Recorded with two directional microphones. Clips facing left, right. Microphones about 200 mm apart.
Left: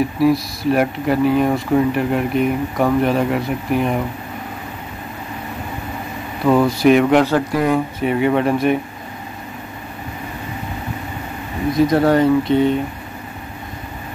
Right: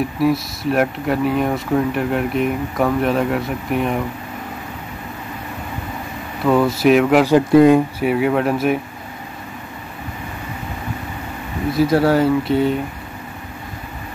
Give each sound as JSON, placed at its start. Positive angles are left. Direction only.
{"t": 0.2, "sound": "speech", "side_deg": 0}
{"t": 6.4, "sound": "speech", "side_deg": 0}
{"t": 7.2, "sound": "speech", "side_deg": -20}
{"t": 8.0, "sound": "speech", "side_deg": -5}
{"t": 11.7, "sound": "speech", "side_deg": -5}